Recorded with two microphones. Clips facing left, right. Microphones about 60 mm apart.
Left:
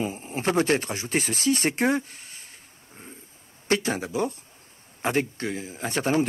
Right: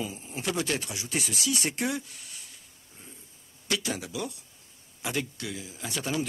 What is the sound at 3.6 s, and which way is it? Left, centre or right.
Speech, left.